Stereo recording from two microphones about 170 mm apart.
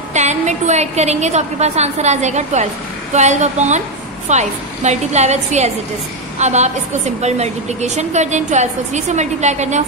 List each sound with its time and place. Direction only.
0.1 s a woman's voice: 40° right (ahead or behind)